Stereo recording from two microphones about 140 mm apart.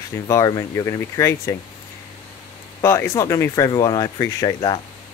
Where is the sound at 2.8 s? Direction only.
20° left (ahead or behind).